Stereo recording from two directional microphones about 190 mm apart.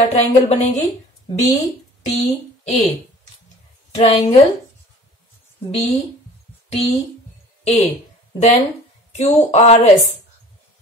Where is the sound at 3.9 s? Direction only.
35° left (ahead or behind).